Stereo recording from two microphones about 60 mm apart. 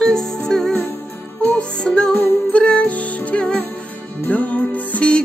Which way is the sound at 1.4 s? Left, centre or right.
Centre.